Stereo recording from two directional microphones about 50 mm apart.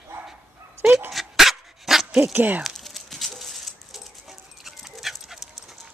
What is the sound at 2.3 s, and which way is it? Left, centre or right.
Speech, right.